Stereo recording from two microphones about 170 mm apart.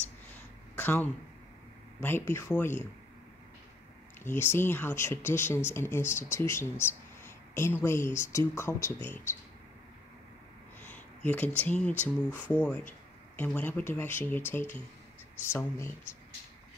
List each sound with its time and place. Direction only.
0.7 s speech: 10° left (ahead or behind)
4.2 s speech: 15° left (ahead or behind)
10.9 s speech: 10° left (ahead or behind)